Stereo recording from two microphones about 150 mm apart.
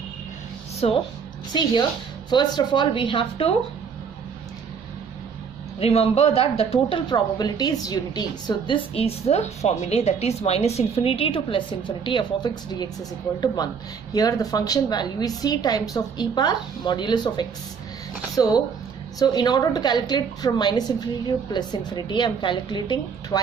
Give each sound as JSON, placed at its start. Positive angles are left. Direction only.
{"t": 0.8, "sound": "speech", "side_deg": 40}
{"t": 1.5, "sound": "speech", "side_deg": 30}
{"t": 5.8, "sound": "speech", "side_deg": 45}
{"t": 14.1, "sound": "a woman's voice", "side_deg": 25}